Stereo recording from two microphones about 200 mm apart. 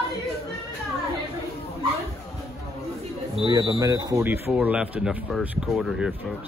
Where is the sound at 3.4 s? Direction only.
25° right (ahead or behind); by 6.1 s centre (ahead or behind).